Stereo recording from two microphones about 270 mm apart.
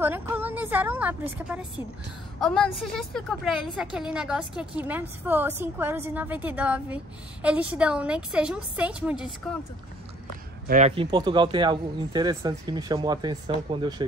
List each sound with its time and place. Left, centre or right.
0.0 s a woman's voice: centre
10.7 s speech: right
11.1 s speech: centre